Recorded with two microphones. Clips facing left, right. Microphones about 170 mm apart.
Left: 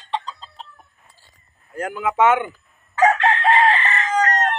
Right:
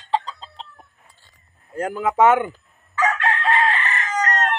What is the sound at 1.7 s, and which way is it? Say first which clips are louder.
Speech: right 1 dB; 30° right (ahead or behind).